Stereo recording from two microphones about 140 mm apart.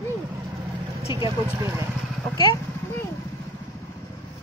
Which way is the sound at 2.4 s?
20° left (ahead or behind).